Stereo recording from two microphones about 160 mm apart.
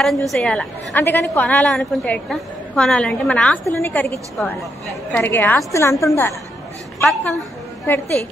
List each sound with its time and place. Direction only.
0.0 s a woman's voice: centre (ahead or behind); by 6.3 s 15° left (ahead or behind)
7.1 s a woman's voice: centre (ahead or behind)
7.8 s a woman's voice: 15° left (ahead or behind)